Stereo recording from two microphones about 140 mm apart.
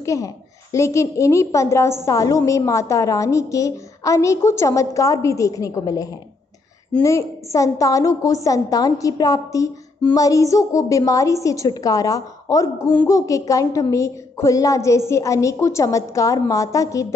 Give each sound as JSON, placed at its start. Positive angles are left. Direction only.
{"t": 0.0, "sound": "a woman's voice", "side_deg": 20}